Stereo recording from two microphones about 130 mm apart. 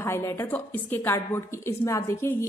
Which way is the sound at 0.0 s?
20° left (ahead or behind).